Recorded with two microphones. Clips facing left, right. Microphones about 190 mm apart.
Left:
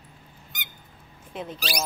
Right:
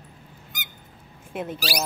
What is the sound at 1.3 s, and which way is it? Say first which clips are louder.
Speech: right 3 dB; 5° right (ahead or behind).